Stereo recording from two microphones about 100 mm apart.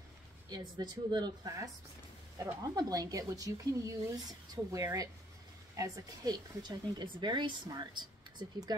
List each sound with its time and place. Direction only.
0.5 s speech: 45° right (ahead or behind)